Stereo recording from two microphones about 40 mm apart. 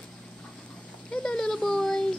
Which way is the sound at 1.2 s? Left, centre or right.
Centre.